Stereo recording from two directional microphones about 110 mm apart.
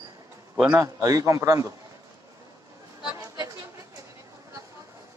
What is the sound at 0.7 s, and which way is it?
Speech, 30° right (ahead or behind).